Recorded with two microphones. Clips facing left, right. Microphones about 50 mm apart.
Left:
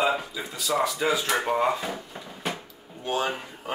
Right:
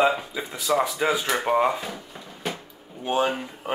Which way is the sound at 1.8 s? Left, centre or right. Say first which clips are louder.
Left 2 dB; centre.